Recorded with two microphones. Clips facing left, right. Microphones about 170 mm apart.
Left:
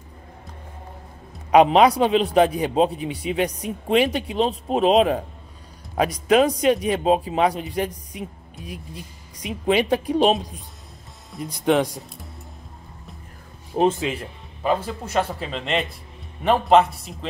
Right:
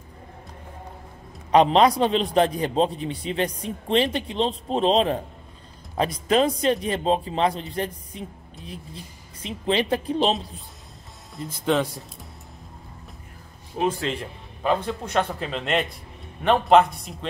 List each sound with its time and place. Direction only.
1.5 s a man's voice: 10° left (ahead or behind)
14.0 s speech: 5° left (ahead or behind)